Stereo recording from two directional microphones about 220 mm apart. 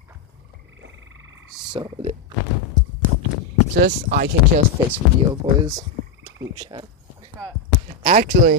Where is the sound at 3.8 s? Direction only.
40° right (ahead or behind).